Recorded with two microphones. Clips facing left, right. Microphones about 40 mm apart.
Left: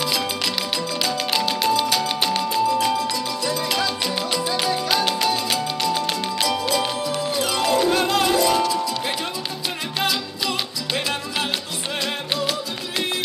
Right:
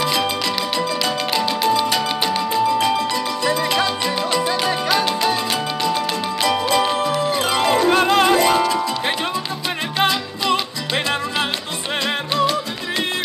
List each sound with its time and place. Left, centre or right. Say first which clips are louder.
1.5 s music: right 3 dB; right
8.5 s music: right 3 dB; right